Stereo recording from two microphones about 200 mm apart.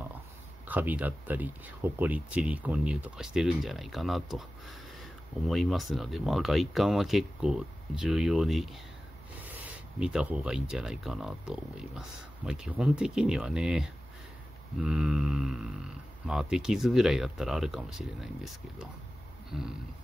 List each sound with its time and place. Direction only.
0.7 s speech: 10° right (ahead or behind)